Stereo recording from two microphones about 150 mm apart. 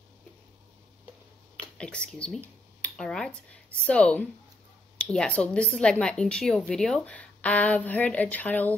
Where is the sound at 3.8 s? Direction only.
10° left (ahead or behind).